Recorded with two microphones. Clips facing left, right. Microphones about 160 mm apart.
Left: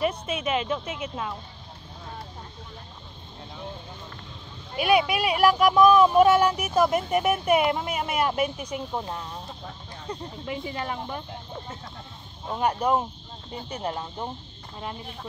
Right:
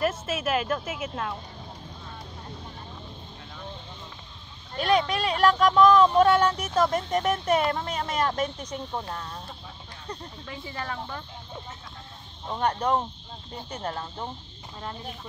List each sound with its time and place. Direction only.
0.0 s a woman's voice: 5° right (ahead or behind)
4.7 s speech: 10° left (ahead or behind)
12.4 s speech: 10° left (ahead or behind)